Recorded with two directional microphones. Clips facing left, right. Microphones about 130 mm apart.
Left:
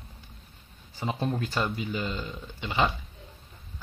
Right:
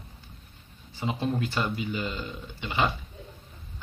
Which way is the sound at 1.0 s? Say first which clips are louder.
Right 1 dB; 40° left (ahead or behind).